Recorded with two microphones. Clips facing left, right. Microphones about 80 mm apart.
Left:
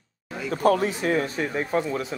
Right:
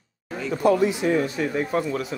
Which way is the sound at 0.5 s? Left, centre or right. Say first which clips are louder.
Right 2 dB; left.